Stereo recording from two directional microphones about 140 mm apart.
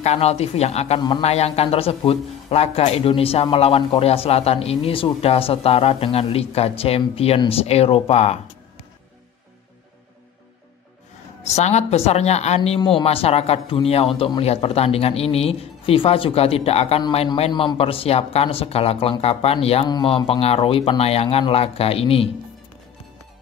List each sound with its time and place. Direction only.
0.0 s a woman's voice: 50° left (ahead or behind)
11.4 s a woman's voice: 55° left (ahead or behind)
17.5 s a woman's voice: 35° left (ahead or behind)